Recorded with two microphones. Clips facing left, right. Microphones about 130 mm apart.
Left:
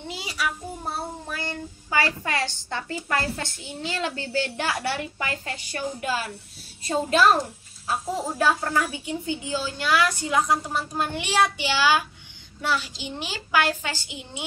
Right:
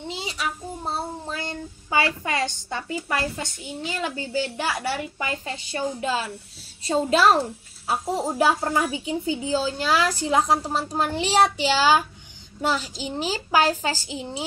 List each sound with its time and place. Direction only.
0.1 s child singing: 25° right (ahead or behind); by 5.0 s 5° right (ahead or behind)
5.2 s a woman's voice: 20° right (ahead or behind)
7.3 s a woman's voice: 30° right (ahead or behind)
9.0 s a woman's voice: 30° right (ahead or behind)